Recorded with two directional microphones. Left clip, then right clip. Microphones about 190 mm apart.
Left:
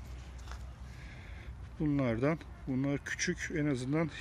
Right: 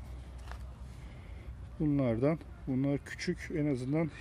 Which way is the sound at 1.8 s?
15° right (ahead or behind).